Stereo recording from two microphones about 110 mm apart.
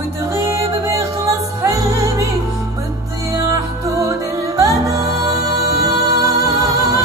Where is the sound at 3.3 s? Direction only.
30° right (ahead or behind).